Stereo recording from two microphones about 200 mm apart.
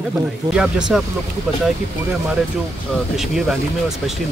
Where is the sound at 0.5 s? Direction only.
5° right (ahead or behind).